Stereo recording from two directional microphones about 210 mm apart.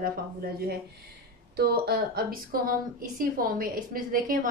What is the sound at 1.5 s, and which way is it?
A woman's voice, 50° right (ahead or behind).